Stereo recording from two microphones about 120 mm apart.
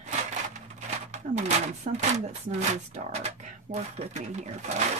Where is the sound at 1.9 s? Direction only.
70° right (ahead or behind).